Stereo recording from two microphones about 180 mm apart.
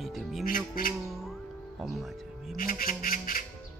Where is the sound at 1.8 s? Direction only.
Centre (ahead or behind).